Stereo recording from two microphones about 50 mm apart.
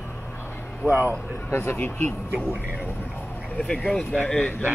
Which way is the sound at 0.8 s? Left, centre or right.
Right.